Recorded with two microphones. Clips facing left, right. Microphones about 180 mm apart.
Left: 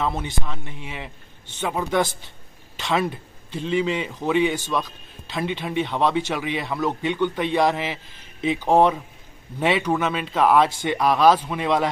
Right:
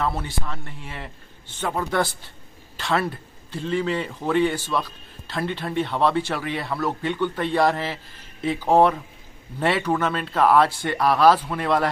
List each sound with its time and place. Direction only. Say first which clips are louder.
0.2 s speech: left 1 dB; 15° left (ahead or behind)
4.6 s a man's voice: even; 10° right (ahead or behind)
5.2 s speech: left 1 dB; 15° left (ahead or behind)